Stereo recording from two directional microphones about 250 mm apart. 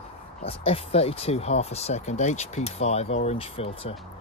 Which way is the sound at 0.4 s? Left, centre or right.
Left.